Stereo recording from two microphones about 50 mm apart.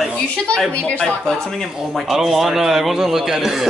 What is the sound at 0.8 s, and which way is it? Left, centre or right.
Speech, left.